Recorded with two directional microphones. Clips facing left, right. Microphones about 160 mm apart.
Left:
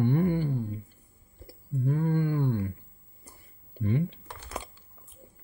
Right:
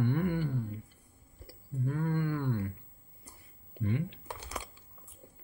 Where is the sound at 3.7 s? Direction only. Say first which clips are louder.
Left 5 dB; 30° left (ahead or behind).